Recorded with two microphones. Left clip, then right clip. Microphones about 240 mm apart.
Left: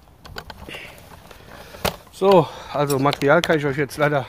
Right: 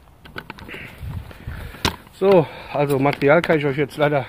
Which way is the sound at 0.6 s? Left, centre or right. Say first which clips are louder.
Even; left.